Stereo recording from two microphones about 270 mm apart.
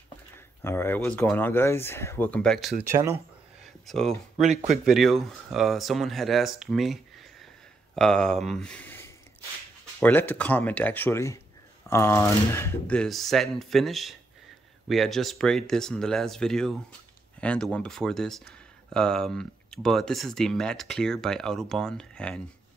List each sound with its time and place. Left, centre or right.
0.6 s speech: centre
2.9 s speech: centre
3.6 s speech: centre
4.5 s speech: right
4.8 s speech: centre